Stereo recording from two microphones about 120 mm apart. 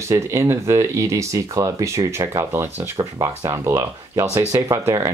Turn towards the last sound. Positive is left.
turn(degrees=-25)  # may be behind; listen again after turning